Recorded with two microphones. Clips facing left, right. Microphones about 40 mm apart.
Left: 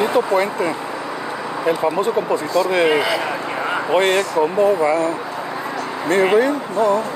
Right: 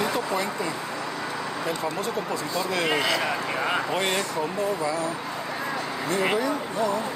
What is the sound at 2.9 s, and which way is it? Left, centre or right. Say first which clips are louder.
Speech: left 7 dB; centre.